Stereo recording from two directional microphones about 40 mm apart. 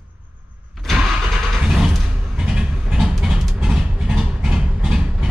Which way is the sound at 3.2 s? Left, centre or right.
Centre.